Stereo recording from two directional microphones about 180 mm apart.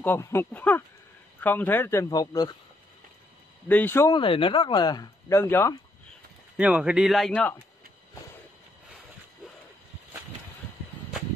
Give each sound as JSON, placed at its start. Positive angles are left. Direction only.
{"t": 0.0, "sound": "a man's voice", "side_deg": 15}
{"t": 3.6, "sound": "a man's voice", "side_deg": 10}
{"t": 4.1, "sound": "speech", "side_deg": 30}
{"t": 6.5, "sound": "speech", "side_deg": -5}